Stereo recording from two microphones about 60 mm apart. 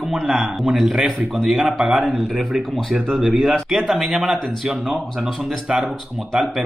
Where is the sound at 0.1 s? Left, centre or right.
Centre.